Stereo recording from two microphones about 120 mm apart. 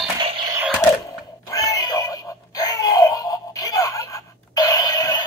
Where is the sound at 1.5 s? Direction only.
30° left (ahead or behind).